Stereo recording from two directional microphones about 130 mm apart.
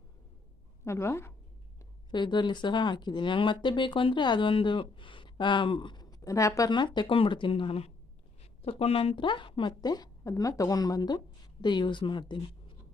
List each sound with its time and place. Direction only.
0.8 s a woman's voice: 20° left (ahead or behind)
2.0 s speech: 35° left (ahead or behind)
6.7 s speech: 35° left (ahead or behind)